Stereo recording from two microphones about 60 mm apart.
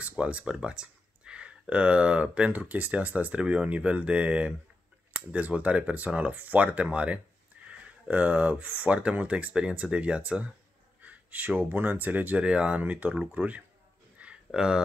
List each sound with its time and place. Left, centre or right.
0.2 s speech: right
14.5 s speech: centre